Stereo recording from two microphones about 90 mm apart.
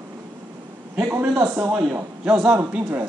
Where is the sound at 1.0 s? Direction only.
25° right (ahead or behind).